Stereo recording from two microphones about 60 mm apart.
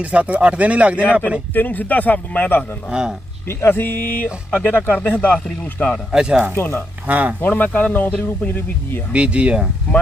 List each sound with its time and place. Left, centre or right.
0.0 s speech: right
1.5 s speech: left
2.9 s speech: centre
3.4 s speech: left
4.5 s speech: left
6.1 s speech: centre
6.5 s speech: left
7.1 s speech: right
7.4 s speech: left
9.1 s speech: centre